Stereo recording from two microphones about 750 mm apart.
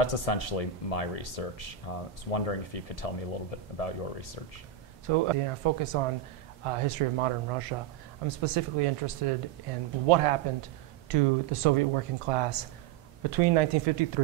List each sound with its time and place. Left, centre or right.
0.0 s speech: left
5.0 s speech: right